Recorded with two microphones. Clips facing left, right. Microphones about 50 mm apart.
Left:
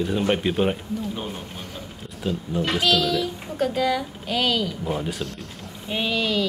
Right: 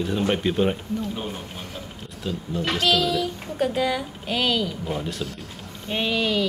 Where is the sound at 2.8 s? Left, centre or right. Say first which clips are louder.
Right 1 dB; centre.